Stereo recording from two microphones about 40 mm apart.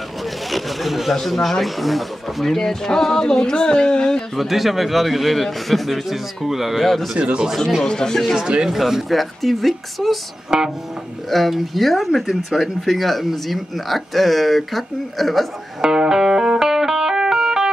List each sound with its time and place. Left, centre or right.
0.5 s a sound: centre
1.1 s speech: centre
4.4 s speech: centre
6.8 s speech: centre
7.2 s speech: right
7.8 s speech: centre
8.4 s speech: right
8.6 s speech: centre
10.5 s speech: centre
11.2 s speech: centre
15.8 s music: centre